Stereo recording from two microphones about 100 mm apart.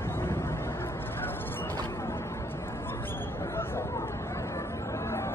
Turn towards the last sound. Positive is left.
turn(degrees=25)  # may be behind; listen again after turning